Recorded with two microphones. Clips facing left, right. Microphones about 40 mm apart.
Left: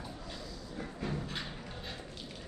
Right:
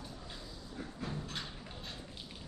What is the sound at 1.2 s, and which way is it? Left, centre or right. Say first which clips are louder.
Music: left 3 dB; centre.